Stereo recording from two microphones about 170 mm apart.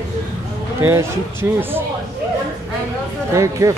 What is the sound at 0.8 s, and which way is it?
Speech, 15° right (ahead or behind).